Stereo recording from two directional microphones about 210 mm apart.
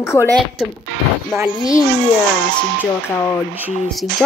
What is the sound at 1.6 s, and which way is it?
Speech, 15° left (ahead or behind).